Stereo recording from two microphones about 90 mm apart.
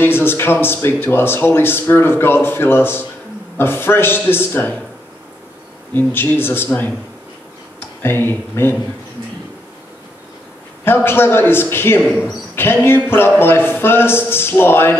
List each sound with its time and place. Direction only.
0.0 s speech: 25° left (ahead or behind)
5.9 s speech: 25° left (ahead or behind)
8.0 s speech: 25° left (ahead or behind)
10.9 s speech: 25° left (ahead or behind)